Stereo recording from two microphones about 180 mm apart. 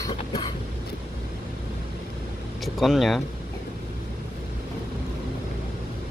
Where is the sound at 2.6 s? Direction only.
Centre (ahead or behind).